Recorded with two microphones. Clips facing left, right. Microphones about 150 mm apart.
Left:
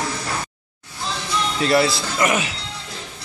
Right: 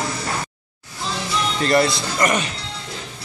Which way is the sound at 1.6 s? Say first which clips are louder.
Even; 5° left (ahead or behind).